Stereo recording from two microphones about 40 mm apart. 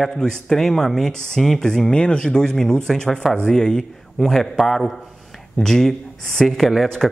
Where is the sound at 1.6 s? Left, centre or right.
Centre.